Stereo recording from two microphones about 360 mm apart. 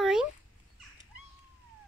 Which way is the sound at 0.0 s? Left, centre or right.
Centre.